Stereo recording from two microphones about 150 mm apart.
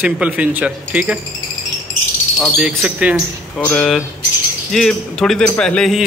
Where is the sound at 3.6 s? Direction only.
5° left (ahead or behind).